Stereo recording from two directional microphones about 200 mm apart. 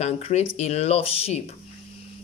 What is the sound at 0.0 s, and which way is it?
Speech, 35° left (ahead or behind).